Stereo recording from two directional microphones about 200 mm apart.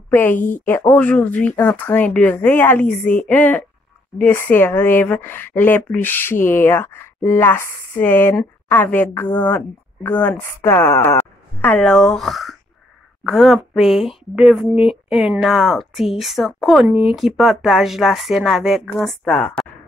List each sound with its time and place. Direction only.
0.1 s speech: 10° left (ahead or behind)
0.4 s speech: 40° left (ahead or behind)
0.7 s speech: 10° left (ahead or behind)